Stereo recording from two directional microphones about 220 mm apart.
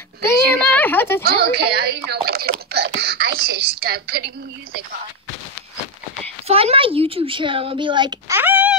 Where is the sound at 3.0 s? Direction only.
45° right (ahead or behind).